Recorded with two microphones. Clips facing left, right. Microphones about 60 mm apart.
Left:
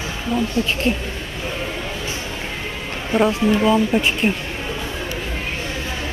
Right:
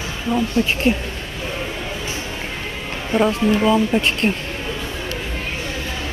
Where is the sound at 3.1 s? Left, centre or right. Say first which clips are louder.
Even; centre.